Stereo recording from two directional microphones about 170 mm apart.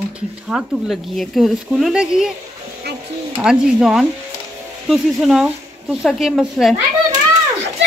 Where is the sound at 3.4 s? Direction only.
5° right (ahead or behind).